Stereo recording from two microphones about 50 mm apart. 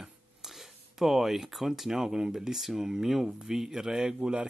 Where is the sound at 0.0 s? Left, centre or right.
Centre.